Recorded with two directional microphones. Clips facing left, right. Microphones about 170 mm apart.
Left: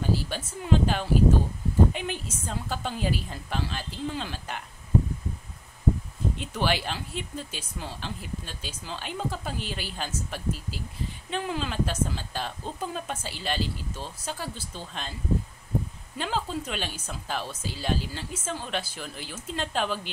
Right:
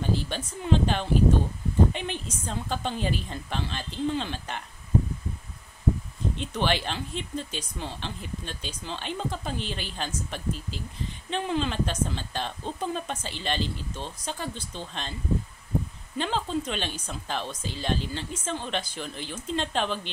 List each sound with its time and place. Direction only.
0.1 s a woman's voice: 5° left (ahead or behind)
6.3 s speech: 5° left (ahead or behind)
16.2 s speech: 5° left (ahead or behind)